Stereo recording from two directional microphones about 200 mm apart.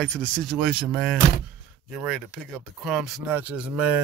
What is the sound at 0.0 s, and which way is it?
Speech, 5° left (ahead or behind).